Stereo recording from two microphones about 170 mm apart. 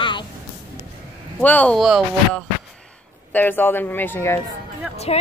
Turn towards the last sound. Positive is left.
turn(degrees=40)  # may be behind; listen again after turning